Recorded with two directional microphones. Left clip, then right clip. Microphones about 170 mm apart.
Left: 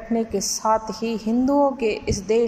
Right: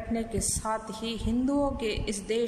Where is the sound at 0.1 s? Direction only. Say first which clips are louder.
Left 10 dB; 15° right (ahead or behind).